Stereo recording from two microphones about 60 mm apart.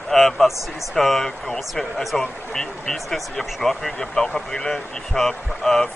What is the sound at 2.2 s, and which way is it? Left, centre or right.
Speech, centre.